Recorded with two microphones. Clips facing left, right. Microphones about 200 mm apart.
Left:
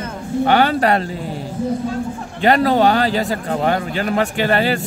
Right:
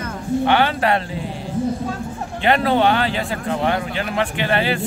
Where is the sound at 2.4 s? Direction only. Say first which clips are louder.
Left 3 dB; 40° left (ahead or behind).